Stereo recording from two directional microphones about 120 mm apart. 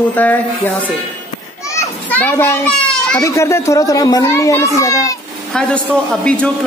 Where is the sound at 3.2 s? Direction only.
25° left (ahead or behind).